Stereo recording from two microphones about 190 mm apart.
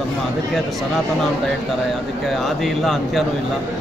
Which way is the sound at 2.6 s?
Centre (ahead or behind).